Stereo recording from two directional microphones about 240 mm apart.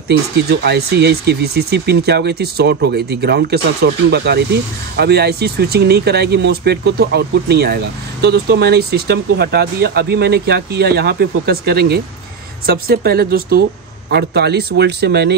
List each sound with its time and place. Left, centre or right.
0.1 s speech: right